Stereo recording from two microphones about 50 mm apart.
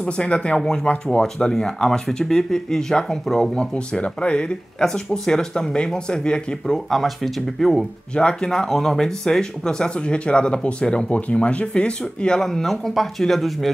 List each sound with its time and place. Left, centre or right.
0.0 s speech: centre
1.2 s speech: centre
3.5 s speech: centre
7.6 s speech: centre
8.2 s speech: centre
12.4 s speech: centre